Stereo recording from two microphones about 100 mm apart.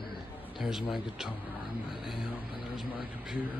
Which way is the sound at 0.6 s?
5° right (ahead or behind).